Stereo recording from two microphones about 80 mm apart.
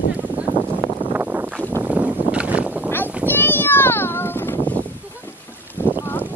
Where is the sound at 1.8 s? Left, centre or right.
Centre.